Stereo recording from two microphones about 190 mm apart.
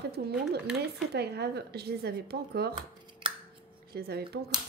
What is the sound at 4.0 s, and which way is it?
Speech, 55° right (ahead or behind).